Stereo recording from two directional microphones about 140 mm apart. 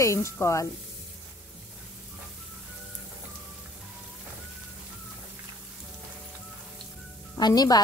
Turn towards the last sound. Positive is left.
turn(degrees=30)  # may be behind; listen again after turning